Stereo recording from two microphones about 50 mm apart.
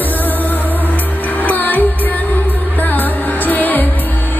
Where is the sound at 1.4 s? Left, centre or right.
Left.